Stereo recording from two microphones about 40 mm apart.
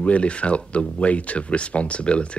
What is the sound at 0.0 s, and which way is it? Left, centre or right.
Speech, left.